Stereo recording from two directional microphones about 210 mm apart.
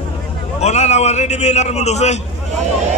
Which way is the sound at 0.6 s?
30° left (ahead or behind).